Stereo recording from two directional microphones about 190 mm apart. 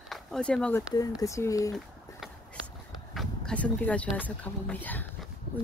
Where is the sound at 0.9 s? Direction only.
20° left (ahead or behind).